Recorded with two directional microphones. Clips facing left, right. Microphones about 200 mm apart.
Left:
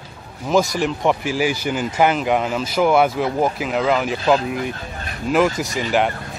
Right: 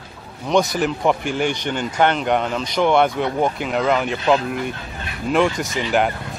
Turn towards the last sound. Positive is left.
turn(degrees=0)  # may be behind; listen again after turning